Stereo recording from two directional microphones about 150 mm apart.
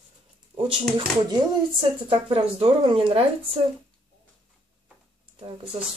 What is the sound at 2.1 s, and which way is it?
Speech, 35° right (ahead or behind).